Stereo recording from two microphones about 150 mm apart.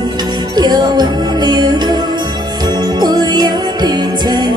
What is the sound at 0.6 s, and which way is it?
Music, 25° right (ahead or behind).